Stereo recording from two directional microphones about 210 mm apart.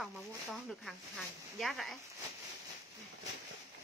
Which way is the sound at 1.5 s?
Centre (ahead or behind).